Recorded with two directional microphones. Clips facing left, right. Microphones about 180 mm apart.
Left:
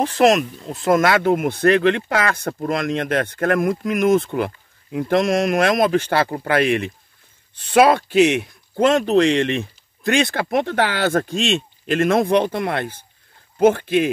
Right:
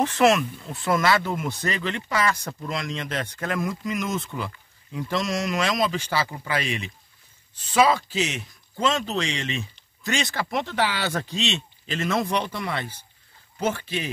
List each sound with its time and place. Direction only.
0.0 s speech: 35° left (ahead or behind); by 14.0 s 55° left (ahead or behind)